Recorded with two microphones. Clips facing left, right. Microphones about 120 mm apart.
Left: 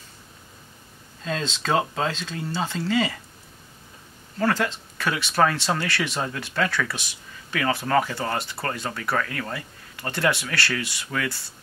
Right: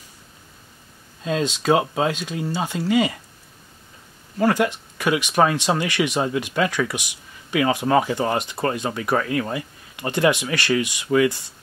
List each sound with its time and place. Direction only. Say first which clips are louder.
1.2 s speech: right 6 dB; 15° right (ahead or behind)
4.4 s speech: right 4 dB; 15° right (ahead or behind)